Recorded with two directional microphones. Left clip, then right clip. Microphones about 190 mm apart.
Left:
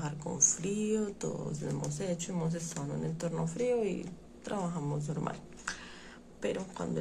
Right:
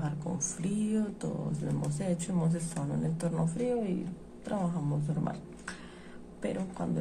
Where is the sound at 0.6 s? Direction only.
15° left (ahead or behind).